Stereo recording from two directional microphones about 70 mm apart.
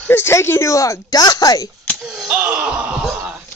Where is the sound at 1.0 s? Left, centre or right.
Left.